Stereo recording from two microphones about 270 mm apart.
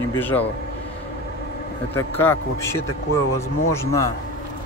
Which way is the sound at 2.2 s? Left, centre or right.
Centre.